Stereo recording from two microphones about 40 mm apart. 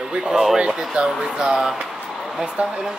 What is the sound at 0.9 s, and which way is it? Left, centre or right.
Speech, centre.